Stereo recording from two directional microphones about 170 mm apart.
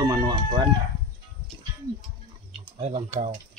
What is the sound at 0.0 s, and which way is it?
Chicken, 25° right (ahead or behind).